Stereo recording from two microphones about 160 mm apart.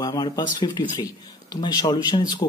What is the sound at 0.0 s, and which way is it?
Speech, 25° left (ahead or behind).